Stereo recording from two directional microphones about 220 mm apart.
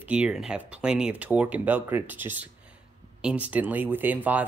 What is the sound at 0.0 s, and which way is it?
Speech, 5° right (ahead or behind).